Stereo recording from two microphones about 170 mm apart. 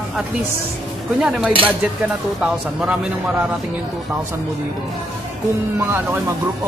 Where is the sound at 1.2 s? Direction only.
5° right (ahead or behind).